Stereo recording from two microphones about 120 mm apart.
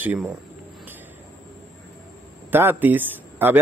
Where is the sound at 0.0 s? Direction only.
15° right (ahead or behind).